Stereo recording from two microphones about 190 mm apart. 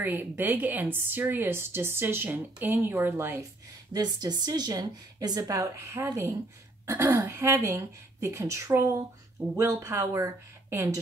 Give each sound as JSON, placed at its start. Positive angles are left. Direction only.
{"t": 0.0, "sound": "a woman's voice", "side_deg": -10}